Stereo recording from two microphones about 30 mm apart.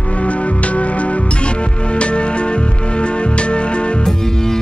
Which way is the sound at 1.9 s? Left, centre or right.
Left.